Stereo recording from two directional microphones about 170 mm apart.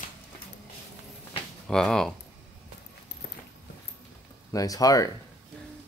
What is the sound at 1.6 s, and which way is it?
Speech, 5° left (ahead or behind).